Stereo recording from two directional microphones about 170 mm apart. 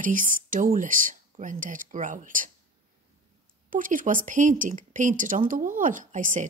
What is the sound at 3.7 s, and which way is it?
Speech, 50° right (ahead or behind).